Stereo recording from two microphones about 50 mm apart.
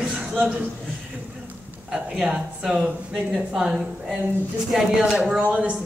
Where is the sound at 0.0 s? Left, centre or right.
Right.